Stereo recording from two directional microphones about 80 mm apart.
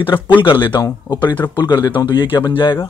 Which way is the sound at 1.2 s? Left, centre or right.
Left.